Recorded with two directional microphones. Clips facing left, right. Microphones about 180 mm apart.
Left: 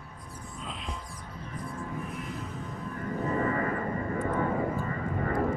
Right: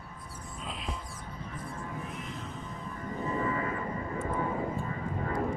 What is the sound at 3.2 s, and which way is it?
Music, 55° left (ahead or behind).